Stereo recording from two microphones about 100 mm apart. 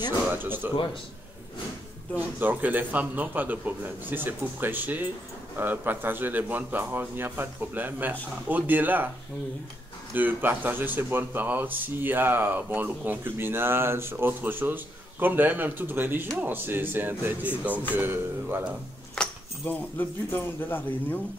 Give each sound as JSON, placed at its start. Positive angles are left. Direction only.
{"t": 0.3, "sound": "speech", "side_deg": -20}
{"t": 2.1, "sound": "speech", "side_deg": -20}
{"t": 10.1, "sound": "speech", "side_deg": -20}
{"t": 19.1, "sound": "speech", "side_deg": 15}